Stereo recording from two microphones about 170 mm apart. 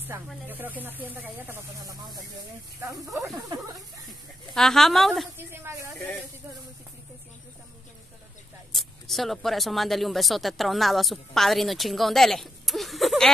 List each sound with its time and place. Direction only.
0.1 s speech: 20° right (ahead or behind)
2.8 s speech: 20° right (ahead or behind)
4.6 s speech: centre (ahead or behind)
5.4 s speech: 15° right (ahead or behind)
8.7 s speech: centre (ahead or behind)